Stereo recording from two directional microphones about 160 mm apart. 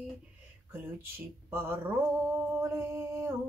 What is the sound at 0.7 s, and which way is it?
Male singing, 15° right (ahead or behind).